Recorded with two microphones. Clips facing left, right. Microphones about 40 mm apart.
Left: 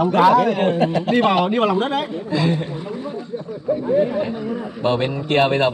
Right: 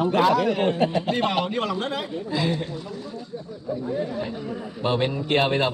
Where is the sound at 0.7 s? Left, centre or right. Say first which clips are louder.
Left 4 dB; left.